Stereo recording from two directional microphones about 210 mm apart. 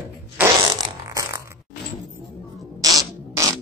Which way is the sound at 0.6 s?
15° right (ahead or behind).